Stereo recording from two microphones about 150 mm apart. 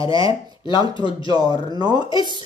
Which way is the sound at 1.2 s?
25° right (ahead or behind).